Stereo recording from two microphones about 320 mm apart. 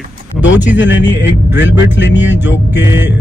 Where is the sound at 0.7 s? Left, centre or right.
Left.